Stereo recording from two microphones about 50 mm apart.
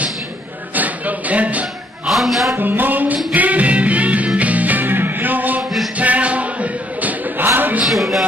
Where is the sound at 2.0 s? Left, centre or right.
Centre.